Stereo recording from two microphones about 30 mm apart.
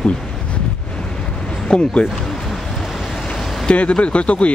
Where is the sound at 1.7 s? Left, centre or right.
Left.